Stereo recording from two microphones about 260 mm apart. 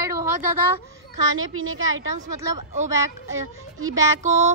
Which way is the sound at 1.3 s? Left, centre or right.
Right.